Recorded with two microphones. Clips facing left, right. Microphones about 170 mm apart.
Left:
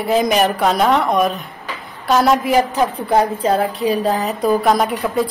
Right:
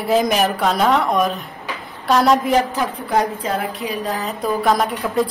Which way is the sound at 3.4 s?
30° left (ahead or behind).